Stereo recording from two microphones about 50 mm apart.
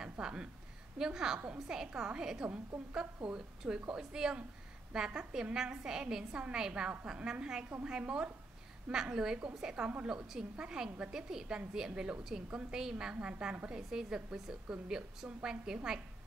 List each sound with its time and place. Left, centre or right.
0.0 s a sound: centre
0.9 s a woman's voice: centre
8.8 s a woman's voice: centre
13.0 s a woman's voice: right